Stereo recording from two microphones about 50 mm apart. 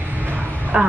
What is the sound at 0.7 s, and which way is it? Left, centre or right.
Speech, centre.